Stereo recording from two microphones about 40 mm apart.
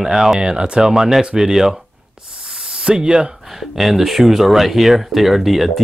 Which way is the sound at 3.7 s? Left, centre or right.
Centre.